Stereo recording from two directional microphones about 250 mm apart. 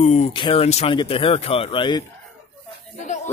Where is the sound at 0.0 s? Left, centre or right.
Left.